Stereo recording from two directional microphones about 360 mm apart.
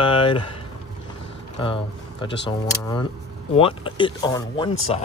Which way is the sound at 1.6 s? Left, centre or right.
Centre.